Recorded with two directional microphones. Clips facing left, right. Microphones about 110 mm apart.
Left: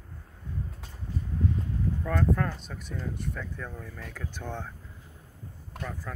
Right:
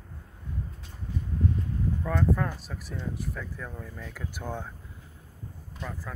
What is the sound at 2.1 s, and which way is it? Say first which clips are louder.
Speech: even; 5° right (ahead or behind).